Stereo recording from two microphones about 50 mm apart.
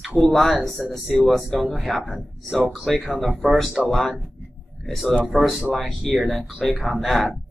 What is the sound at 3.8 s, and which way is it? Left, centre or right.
Speech, right.